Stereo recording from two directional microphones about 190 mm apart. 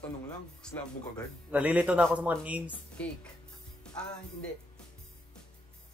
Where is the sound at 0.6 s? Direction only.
5° left (ahead or behind).